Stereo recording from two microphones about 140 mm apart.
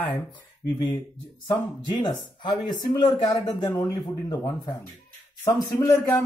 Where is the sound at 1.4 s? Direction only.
35° left (ahead or behind).